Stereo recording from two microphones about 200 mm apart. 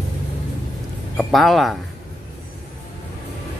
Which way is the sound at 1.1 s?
Centre (ahead or behind).